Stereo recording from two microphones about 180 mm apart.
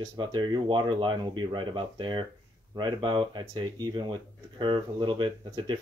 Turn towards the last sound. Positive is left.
turn(degrees=-25)  # may be behind; listen again after turning